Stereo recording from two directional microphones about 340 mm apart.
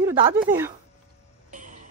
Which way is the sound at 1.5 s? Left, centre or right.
Right.